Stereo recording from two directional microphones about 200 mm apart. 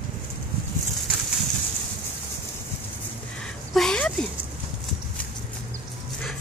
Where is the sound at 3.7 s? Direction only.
5° left (ahead or behind).